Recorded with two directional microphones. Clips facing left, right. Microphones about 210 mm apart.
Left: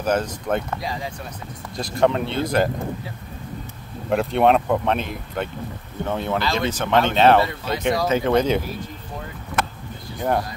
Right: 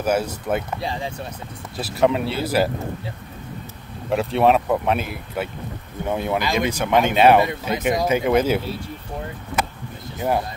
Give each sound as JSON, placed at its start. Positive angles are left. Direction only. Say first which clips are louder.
{"t": 0.0, "sound": "speech", "louder": "right 1 dB", "side_deg": -10}
{"t": 0.7, "sound": "speech", "louder": "right 2 dB", "side_deg": -25}
{"t": 1.8, "sound": "speech", "louder": "even", "side_deg": -5}
{"t": 4.1, "sound": "speech", "louder": "even", "side_deg": 0}
{"t": 10.1, "sound": "speech", "louder": "even", "side_deg": -5}